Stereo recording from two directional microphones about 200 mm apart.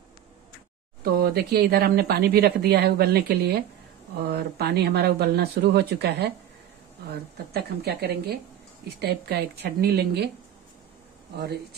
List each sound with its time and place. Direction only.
1.0 s speech: 50° right (ahead or behind)
11.3 s speech: 55° right (ahead or behind)